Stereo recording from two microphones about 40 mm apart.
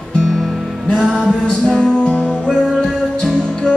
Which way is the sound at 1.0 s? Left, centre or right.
Right.